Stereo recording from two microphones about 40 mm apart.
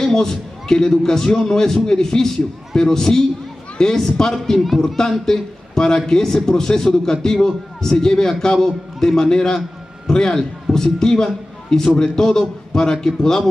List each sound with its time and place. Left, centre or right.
0.0 s a man's voice: centre
4.6 s a man's voice: centre